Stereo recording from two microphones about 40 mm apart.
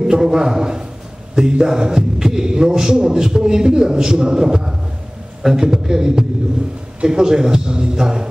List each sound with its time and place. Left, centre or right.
0.0 s a man's voice: centre